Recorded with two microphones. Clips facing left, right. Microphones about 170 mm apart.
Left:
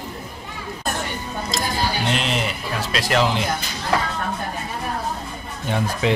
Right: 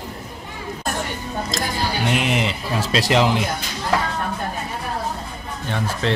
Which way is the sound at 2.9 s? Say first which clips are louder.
Right 5 dB; 30° right (ahead or behind).